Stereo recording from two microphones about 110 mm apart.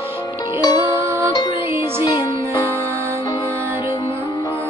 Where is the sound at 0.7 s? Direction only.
25° right (ahead or behind).